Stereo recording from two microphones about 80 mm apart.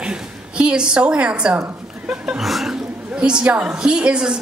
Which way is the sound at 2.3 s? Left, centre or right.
Centre.